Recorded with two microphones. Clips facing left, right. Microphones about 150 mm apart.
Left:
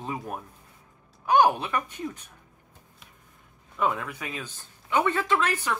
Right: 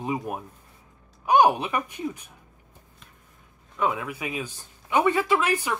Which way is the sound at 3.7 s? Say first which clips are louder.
Right 1 dB; centre (ahead or behind).